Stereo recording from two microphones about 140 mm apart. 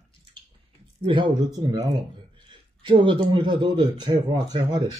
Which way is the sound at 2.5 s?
35° right (ahead or behind).